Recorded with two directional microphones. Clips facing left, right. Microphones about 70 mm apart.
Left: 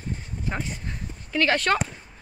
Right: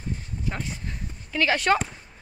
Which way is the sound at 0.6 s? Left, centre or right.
Centre.